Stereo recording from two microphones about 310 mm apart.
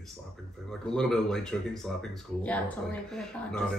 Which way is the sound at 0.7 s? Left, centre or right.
Centre.